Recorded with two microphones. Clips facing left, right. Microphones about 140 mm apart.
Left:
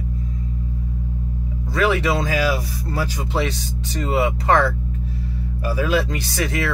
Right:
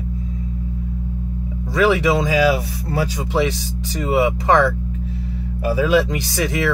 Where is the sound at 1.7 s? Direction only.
15° right (ahead or behind).